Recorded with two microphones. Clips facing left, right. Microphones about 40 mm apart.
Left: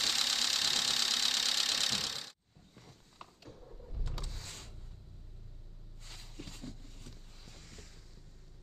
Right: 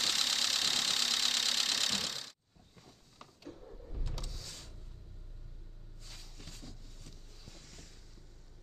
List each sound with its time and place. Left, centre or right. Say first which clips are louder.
0.0 s engine: even; centre
3.5 s vehicle: right 2 dB; centre
4.0 s vehicle: left 1 dB; centre
4.3 s a sound: left 1 dB; left
6.3 s a sound: left 7 dB; left
7.5 s boat: left 2 dB; centre